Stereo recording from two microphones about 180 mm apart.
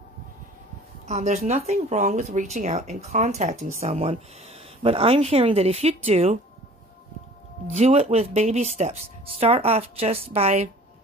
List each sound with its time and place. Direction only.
1.0 s speech: 40° right (ahead or behind)
7.7 s speech: 35° right (ahead or behind)